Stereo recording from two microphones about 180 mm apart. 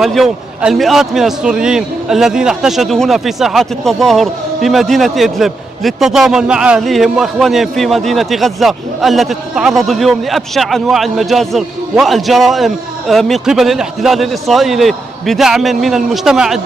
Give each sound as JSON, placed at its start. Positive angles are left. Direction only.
{"t": 0.0, "sound": "a man's voice", "side_deg": 0}